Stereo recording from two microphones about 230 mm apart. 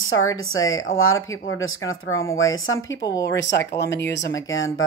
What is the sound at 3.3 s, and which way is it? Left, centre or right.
A woman's voice, left.